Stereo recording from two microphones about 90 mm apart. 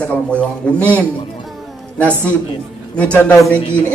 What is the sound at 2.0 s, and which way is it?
Speech, 25° right (ahead or behind).